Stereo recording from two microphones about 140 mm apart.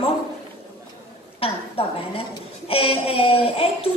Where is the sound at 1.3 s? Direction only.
40° left (ahead or behind).